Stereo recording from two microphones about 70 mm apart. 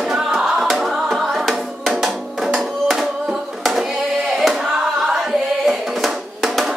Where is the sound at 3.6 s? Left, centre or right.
Centre.